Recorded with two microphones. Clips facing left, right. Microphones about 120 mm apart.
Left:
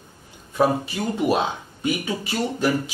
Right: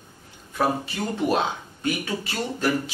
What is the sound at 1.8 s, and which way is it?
Speech, 15° left (ahead or behind).